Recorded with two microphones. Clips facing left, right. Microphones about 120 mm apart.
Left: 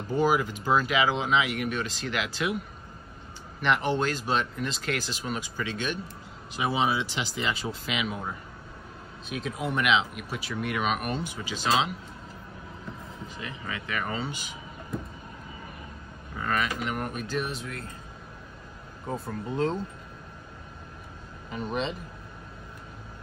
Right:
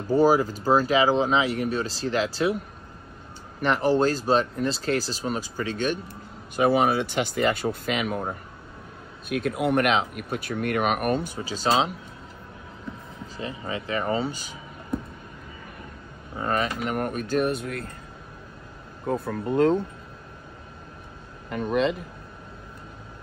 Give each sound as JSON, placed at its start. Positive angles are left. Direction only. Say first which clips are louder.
{"t": 0.1, "sound": "speech", "louder": "right 5 dB", "side_deg": -40}
{"t": 3.6, "sound": "speech", "louder": "right 5 dB", "side_deg": -40}
{"t": 9.3, "sound": "speech", "louder": "right 8 dB", "side_deg": -60}
{"t": 11.3, "sound": "speech", "louder": "right 3 dB", "side_deg": -40}
{"t": 13.4, "sound": "speech", "louder": "right 7 dB", "side_deg": -30}
{"t": 16.3, "sound": "speech", "louder": "right 3 dB", "side_deg": -35}
{"t": 19.0, "sound": "speech", "louder": "right 6 dB", "side_deg": -55}
{"t": 21.5, "sound": "speech", "louder": "right 7 dB", "side_deg": -55}